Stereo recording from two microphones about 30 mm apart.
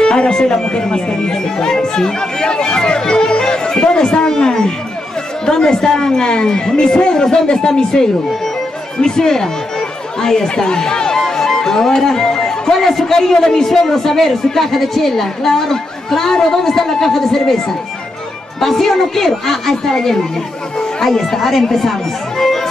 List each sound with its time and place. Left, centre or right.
0.0 s speech: left
10.5 s speech: left
10.8 s music: left
13.3 s speech: centre
18.6 s speech: centre
22.4 s music: centre